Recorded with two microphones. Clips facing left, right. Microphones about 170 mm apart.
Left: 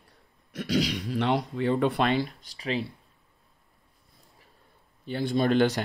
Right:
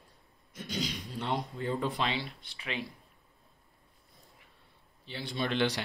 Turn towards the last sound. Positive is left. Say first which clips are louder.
# left 8 dB
turn(degrees=45)  # may be behind; listen again after turning